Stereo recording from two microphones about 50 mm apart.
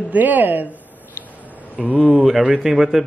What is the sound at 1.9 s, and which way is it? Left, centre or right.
Speech, right.